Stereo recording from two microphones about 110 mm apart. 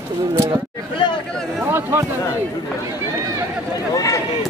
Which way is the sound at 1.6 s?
20° right (ahead or behind).